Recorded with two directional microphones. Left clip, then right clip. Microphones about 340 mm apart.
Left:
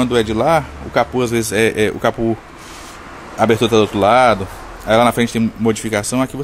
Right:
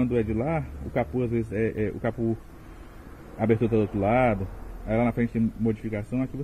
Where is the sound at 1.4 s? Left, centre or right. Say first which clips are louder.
Left 14 dB; left.